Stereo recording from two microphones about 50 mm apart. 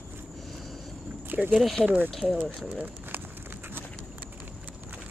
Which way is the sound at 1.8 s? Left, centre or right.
Left.